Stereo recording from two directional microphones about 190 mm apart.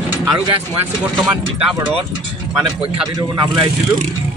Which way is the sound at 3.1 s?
20° right (ahead or behind).